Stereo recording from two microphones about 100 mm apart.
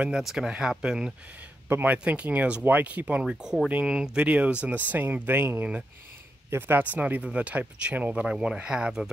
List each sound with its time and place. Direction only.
0.0 s speech: 5° right (ahead or behind)